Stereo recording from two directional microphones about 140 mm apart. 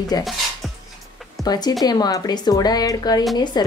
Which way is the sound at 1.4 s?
30° left (ahead or behind).